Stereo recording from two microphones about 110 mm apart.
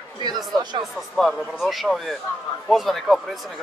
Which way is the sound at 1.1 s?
Centre (ahead or behind).